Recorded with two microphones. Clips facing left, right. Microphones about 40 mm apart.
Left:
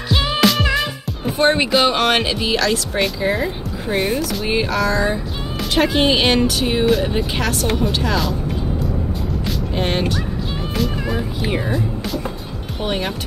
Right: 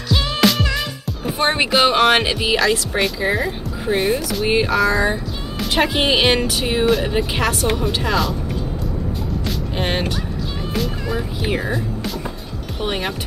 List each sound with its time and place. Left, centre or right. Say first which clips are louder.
0.1 s music: left 1 dB; centre
0.4 s music: left 1 dB; centre
1.5 s speech: right 3 dB; centre
9.5 s music: left 1 dB; centre